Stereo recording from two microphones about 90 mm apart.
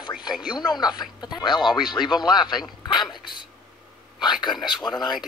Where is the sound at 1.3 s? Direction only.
55° left (ahead or behind).